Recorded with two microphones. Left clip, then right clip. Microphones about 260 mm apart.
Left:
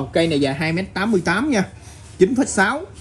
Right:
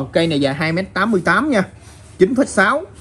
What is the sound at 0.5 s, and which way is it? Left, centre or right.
A man's voice, centre.